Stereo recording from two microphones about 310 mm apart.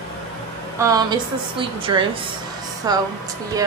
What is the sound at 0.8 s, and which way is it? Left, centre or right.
A woman's voice, centre.